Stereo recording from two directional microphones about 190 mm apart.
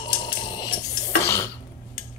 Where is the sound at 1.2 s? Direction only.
15° left (ahead or behind).